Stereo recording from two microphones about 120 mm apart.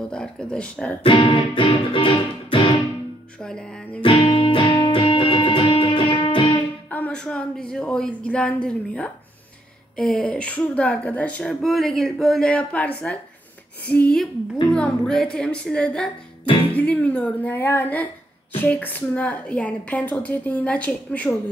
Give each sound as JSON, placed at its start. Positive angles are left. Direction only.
{"t": 0.1, "sound": "a woman's voice", "side_deg": 5}
{"t": 1.0, "sound": "music", "side_deg": 50}
{"t": 3.4, "sound": "a woman's voice", "side_deg": 5}
{"t": 4.0, "sound": "music", "side_deg": 55}
{"t": 4.3, "sound": "music", "side_deg": 45}
{"t": 6.9, "sound": "a woman's voice", "side_deg": 10}
{"t": 16.4, "sound": "music", "side_deg": 45}
{"t": 16.7, "sound": "a woman's voice", "side_deg": 10}